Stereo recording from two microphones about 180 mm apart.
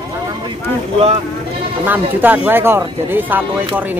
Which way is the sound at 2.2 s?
10° right (ahead or behind).